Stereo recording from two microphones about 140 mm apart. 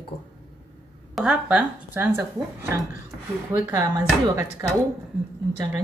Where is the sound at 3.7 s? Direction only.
25° right (ahead or behind).